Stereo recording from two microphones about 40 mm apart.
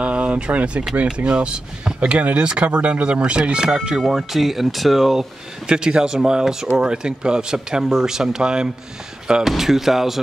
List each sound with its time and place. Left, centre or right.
0.0 s speech: right; by 5.2 s centre
5.7 s speech: right
9.5 s speech: centre